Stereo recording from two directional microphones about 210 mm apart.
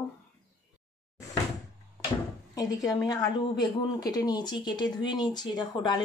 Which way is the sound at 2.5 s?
15° left (ahead or behind).